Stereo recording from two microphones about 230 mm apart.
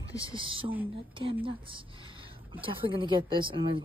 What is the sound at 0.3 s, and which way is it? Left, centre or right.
Speech, right.